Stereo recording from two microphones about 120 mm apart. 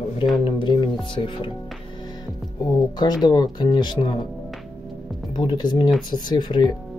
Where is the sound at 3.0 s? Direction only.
35° left (ahead or behind).